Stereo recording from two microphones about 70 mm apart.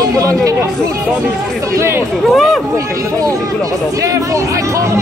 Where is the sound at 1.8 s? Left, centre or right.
Right.